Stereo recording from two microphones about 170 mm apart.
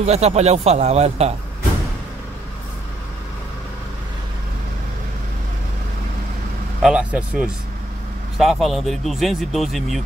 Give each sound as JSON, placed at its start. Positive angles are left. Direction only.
{"t": 0.0, "sound": "speech", "side_deg": -40}
{"t": 6.8, "sound": "speech", "side_deg": -5}